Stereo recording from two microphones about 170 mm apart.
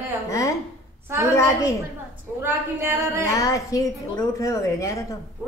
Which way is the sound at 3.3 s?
20° left (ahead or behind).